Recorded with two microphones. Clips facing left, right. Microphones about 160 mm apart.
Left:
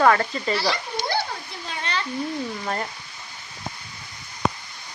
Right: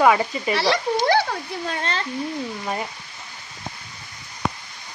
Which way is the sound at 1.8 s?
40° right (ahead or behind).